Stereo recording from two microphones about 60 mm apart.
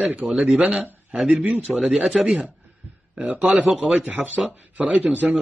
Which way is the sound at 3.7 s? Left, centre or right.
Centre.